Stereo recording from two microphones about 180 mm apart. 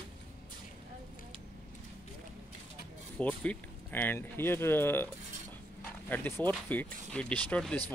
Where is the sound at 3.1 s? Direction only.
5° left (ahead or behind).